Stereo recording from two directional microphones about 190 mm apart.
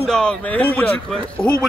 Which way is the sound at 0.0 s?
5° left (ahead or behind).